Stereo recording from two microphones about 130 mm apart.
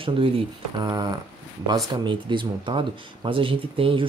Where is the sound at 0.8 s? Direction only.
30° right (ahead or behind).